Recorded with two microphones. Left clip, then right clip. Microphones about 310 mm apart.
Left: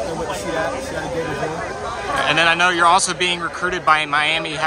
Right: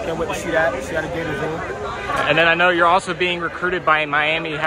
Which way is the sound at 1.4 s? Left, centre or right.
Left.